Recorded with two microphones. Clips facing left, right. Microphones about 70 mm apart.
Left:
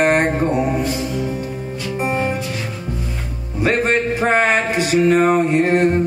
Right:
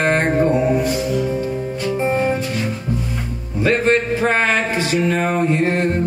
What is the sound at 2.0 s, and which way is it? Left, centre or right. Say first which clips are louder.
Music: right 1 dB; centre.